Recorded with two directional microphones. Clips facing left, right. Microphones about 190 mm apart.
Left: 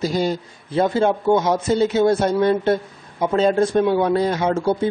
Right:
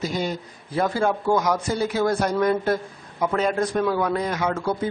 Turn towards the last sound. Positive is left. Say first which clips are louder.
# left 5 dB
turn(degrees=25)  # may be behind; listen again after turning